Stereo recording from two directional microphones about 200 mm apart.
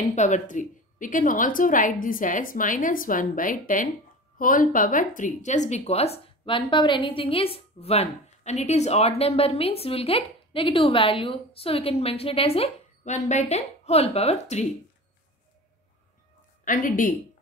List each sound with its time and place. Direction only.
0.0 s a woman's voice: 35° left (ahead or behind)
16.6 s speech: 40° left (ahead or behind)